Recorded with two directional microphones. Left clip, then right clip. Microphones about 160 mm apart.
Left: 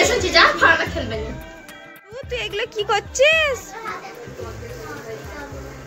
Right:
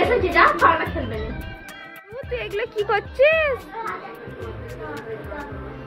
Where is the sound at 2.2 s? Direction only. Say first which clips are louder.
Left 2 dB; 5° right (ahead or behind).